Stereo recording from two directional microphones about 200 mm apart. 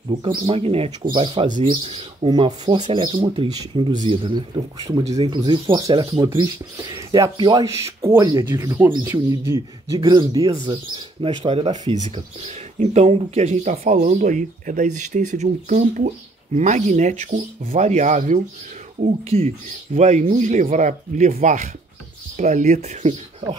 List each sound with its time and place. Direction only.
0.1 s speech: 30° right (ahead or behind)
5.1 s speech: 30° right (ahead or behind)